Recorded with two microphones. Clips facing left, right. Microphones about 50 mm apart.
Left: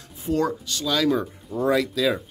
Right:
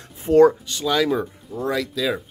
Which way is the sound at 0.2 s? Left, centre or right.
Right.